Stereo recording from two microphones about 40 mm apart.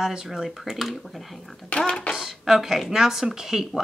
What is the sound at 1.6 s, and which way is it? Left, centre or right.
Speech, left.